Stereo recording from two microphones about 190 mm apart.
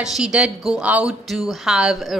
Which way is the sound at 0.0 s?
5° right (ahead or behind).